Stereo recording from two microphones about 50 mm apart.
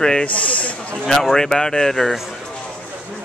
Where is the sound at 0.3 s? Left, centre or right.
Left.